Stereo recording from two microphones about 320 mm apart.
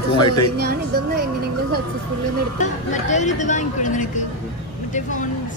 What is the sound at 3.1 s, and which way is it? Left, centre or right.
Speech, left.